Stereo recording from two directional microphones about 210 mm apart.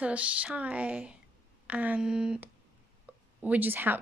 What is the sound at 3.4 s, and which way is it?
Speech, 10° right (ahead or behind).